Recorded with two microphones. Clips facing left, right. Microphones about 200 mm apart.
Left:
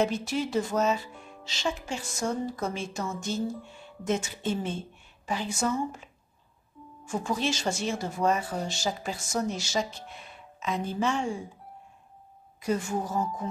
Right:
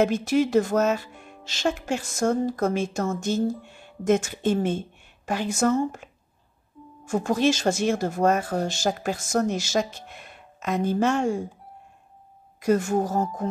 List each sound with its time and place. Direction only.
0.0 s speech: 50° right (ahead or behind)
7.1 s speech: 55° right (ahead or behind)
12.6 s speech: 45° right (ahead or behind)